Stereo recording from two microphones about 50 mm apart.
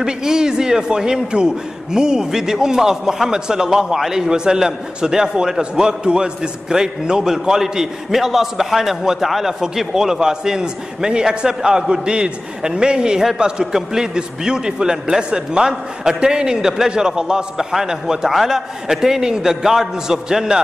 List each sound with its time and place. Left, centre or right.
0.0 s a man's voice: centre